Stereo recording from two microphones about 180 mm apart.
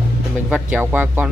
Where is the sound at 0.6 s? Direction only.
10° right (ahead or behind).